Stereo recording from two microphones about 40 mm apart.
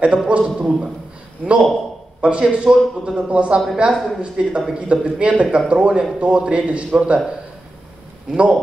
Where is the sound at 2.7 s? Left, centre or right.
Centre.